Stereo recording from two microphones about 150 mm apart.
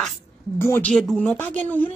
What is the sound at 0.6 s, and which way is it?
Speech, 15° left (ahead or behind).